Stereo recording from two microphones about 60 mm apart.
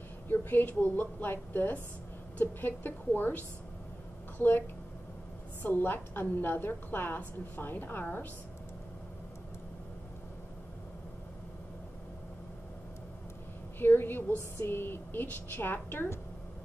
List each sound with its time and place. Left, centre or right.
0.3 s a woman's voice: left
13.7 s a woman's voice: left